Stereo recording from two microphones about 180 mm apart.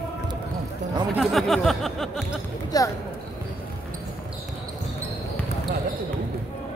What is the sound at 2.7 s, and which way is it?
Speech, 20° left (ahead or behind).